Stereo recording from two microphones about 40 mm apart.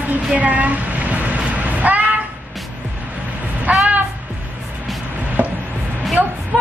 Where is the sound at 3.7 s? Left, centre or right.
Right.